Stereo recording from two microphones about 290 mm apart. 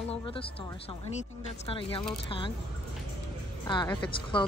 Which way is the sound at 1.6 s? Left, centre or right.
Centre.